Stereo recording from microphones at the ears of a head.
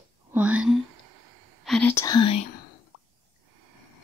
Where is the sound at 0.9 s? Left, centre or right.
Right.